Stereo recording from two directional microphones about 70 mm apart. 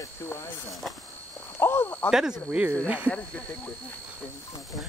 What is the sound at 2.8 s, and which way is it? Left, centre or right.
Speech, right.